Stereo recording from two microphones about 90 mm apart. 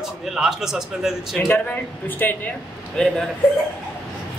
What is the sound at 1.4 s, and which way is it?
Speech, 20° left (ahead or behind).